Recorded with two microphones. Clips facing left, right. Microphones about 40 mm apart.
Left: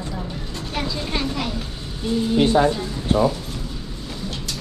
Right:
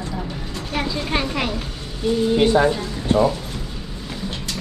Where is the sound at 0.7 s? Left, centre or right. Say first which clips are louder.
Right 3 dB; centre.